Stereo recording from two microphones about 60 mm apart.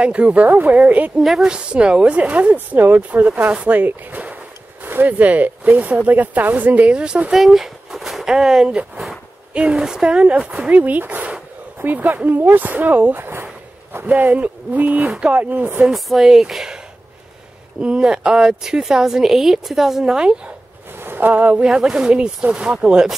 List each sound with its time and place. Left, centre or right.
0.0 s speech: centre
1.2 s a woman's voice: centre
1.5 s speech: centre
7.3 s speech: centre; by 13.1 s right
13.1 s a sound: right
14.0 s speech: right
15.0 s speech: centre
15.9 s a woman's voice: centre
21.0 s speech: right
21.6 s a woman's voice: centre